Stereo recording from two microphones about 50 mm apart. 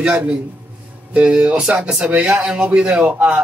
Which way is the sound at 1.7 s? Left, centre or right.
Centre.